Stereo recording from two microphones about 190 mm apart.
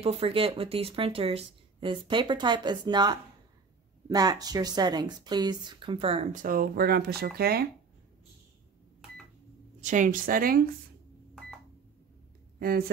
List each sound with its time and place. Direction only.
0.0 s speech: 30° right (ahead or behind); by 7.7 s 55° right (ahead or behind)
9.8 s speech: 40° right (ahead or behind)
12.5 s speech: 50° right (ahead or behind)